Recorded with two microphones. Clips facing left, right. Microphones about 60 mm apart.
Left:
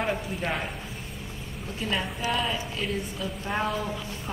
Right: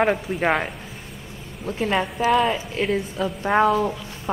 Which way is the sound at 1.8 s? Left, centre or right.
Right.